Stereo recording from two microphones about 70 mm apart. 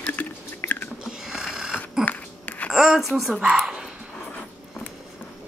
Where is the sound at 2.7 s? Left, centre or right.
Centre.